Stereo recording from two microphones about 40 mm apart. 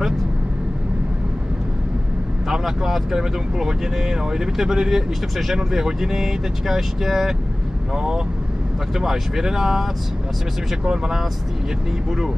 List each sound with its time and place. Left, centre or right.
2.4 s speech: centre
10.9 s speech: centre